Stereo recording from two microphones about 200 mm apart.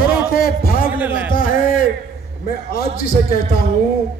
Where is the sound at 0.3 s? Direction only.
45° left (ahead or behind).